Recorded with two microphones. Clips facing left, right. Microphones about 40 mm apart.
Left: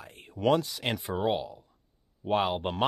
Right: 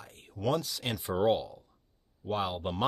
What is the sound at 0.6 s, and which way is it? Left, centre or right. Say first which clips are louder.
Speech: left 4 dB; left.